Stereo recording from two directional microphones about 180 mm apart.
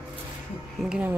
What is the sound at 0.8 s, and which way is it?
Speech, 5° right (ahead or behind).